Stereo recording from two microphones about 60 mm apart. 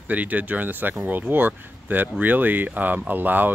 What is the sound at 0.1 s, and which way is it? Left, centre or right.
Speech, right.